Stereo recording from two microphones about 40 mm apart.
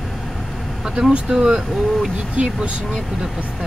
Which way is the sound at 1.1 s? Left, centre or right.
Right.